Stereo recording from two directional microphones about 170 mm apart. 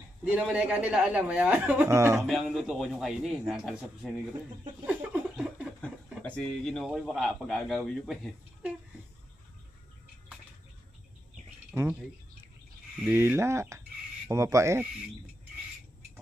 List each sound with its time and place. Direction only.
0.2 s a man's voice: 5° right (ahead or behind)
4.8 s a sound: 5° right (ahead or behind)
6.2 s a man's voice: 5° left (ahead or behind)
11.7 s speech: 15° right (ahead or behind)
13.0 s speech: 10° right (ahead or behind)